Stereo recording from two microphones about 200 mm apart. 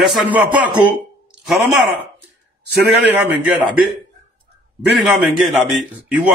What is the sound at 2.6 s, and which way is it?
Speech, 55° right (ahead or behind).